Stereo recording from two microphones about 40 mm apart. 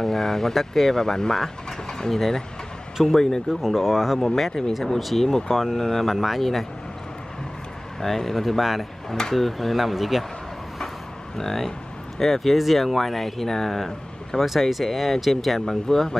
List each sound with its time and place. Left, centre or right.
0.0 s speech: centre
3.6 s speech: centre
4.5 s speech: centre
8.0 s speech: centre
11.3 s speech: centre
14.4 s speech: centre